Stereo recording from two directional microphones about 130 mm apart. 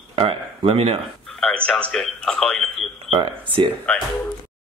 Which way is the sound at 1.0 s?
Centre (ahead or behind).